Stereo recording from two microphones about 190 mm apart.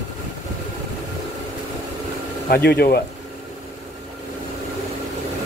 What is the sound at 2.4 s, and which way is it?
Speech, 55° left (ahead or behind).